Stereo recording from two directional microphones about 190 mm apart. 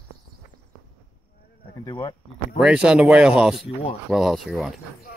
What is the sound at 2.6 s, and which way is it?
Speech, 5° right (ahead or behind).